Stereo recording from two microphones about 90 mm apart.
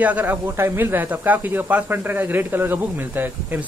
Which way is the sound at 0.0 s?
20° right (ahead or behind).